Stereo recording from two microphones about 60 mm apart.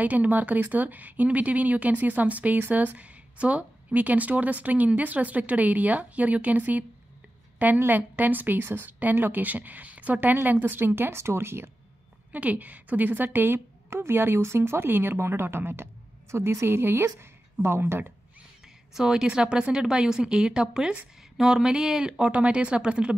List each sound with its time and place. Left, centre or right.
0.0 s a woman's voice: right
12.3 s a woman's voice: right
18.9 s speech: centre